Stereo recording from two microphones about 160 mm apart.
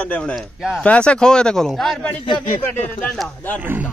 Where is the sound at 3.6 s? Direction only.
10° right (ahead or behind).